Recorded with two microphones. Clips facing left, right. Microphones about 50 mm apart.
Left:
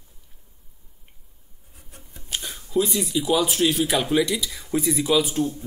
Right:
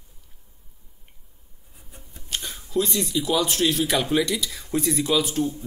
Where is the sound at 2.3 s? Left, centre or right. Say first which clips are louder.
Left 1 dB; centre.